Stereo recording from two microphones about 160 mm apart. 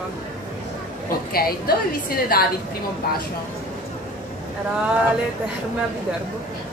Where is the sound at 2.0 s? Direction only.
70° left (ahead or behind).